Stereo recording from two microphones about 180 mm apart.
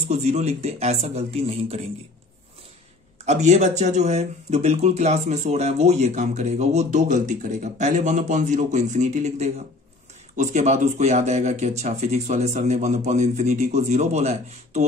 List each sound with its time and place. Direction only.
0.1 s speech: 40° right (ahead or behind)
3.3 s speech: 40° right (ahead or behind)